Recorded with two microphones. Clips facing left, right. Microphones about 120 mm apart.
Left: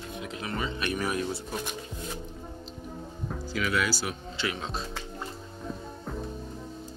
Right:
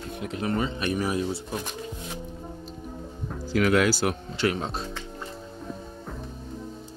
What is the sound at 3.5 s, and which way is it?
Speech, 90° right.